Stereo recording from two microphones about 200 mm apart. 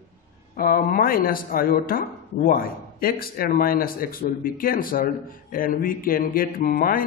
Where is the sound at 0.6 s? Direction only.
45° left (ahead or behind).